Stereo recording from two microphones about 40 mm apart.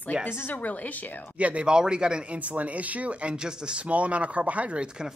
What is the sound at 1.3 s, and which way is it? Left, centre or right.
Speech, right.